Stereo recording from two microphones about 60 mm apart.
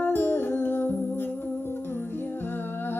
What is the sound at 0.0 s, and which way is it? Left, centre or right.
Music, left.